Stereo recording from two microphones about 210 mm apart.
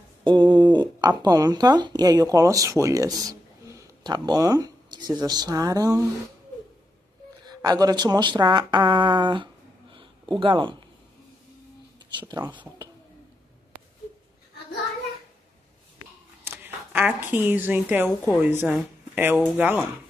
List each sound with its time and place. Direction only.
0.2 s speech: 20° right (ahead or behind)
7.4 s speech: 20° right (ahead or behind)
9.9 s a sound: 25° right (ahead or behind)
12.5 s speech: 20° right (ahead or behind)
16.4 s a woman's voice: 10° right (ahead or behind)